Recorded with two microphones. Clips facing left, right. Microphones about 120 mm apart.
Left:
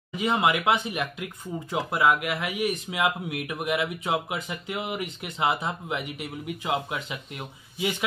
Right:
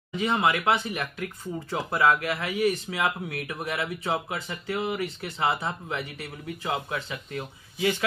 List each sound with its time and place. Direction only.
0.1 s speech: 15° left (ahead or behind)